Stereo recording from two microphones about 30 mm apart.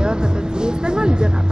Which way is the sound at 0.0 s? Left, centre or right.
Right.